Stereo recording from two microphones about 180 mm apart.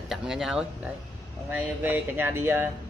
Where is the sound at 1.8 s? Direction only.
10° right (ahead or behind).